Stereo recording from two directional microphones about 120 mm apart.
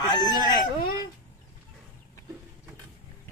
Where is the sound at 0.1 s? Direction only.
35° left (ahead or behind).